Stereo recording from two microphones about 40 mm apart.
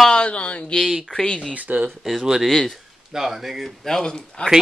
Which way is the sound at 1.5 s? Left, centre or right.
Right.